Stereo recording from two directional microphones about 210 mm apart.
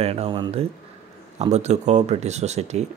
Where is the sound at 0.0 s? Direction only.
30° right (ahead or behind).